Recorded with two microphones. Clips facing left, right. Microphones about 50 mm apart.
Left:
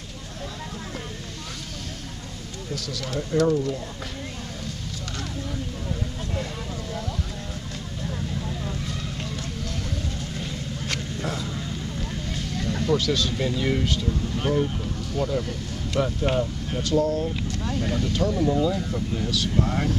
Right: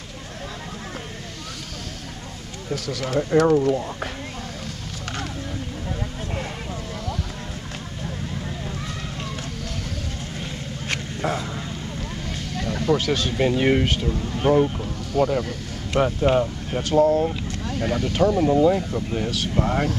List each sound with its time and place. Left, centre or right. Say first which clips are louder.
2.7 s speech: right 6 dB; right
10.9 s a sound: right 5 dB; right
12.8 s speech: right 2 dB; right
13.4 s speech: right 6 dB; right
14.4 s speech: right 7 dB; right
15.1 s speech: right 6 dB; right
15.9 s speech: right 5 dB; right